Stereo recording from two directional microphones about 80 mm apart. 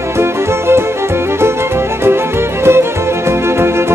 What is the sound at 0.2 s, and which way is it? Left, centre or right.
Music, right.